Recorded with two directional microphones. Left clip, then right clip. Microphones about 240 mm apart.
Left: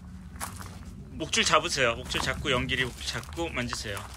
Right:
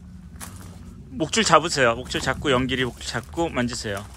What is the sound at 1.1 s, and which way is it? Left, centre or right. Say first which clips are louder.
Speech: right 6 dB; centre.